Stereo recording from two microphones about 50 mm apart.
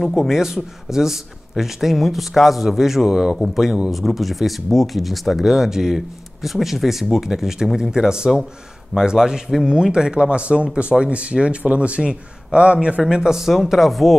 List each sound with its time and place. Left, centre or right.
0.3 s a man's voice: centre